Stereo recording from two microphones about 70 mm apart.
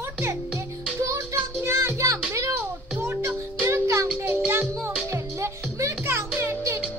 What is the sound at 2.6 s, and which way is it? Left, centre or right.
Music, right.